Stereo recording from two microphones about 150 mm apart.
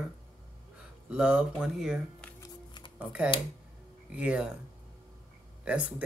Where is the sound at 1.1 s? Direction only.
5° right (ahead or behind).